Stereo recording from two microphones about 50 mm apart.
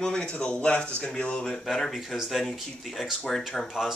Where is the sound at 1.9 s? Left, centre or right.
Centre.